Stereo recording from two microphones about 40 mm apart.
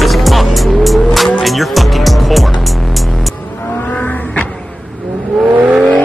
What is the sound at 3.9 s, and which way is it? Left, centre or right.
Vehicle, left.